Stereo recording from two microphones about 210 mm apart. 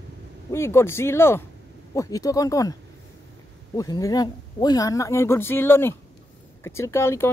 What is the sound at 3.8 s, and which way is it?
Speech, 15° left (ahead or behind).